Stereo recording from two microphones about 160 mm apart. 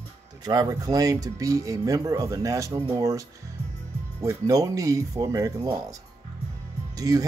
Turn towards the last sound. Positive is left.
turn(degrees=-20)  # may be behind; listen again after turning